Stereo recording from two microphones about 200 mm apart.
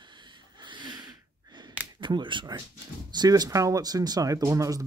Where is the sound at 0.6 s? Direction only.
25° right (ahead or behind).